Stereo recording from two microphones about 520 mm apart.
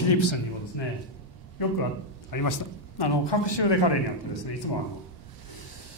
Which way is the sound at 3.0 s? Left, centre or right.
Left.